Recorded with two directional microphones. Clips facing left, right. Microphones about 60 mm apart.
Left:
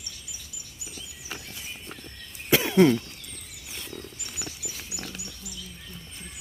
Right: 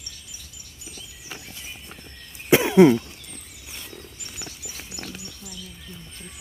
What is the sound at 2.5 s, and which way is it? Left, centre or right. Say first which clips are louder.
Cough: right 5 dB; centre.